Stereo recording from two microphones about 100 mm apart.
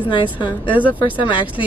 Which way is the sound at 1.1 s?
55° left (ahead or behind).